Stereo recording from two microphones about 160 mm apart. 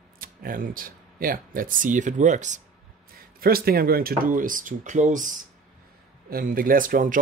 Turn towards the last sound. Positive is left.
turn(degrees=-55)  # may be behind; listen again after turning